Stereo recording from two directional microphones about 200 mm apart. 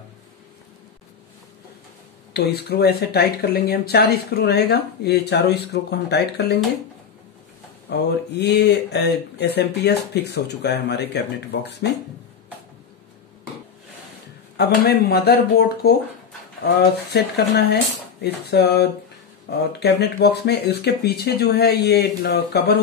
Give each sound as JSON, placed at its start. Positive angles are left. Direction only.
{"t": 2.3, "sound": "speech", "side_deg": 55}
{"t": 7.9, "sound": "speech", "side_deg": 55}
{"t": 14.6, "sound": "speech", "side_deg": 55}